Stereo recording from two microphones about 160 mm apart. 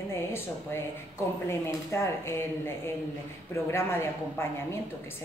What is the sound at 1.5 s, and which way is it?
A woman's voice, 15° left (ahead or behind).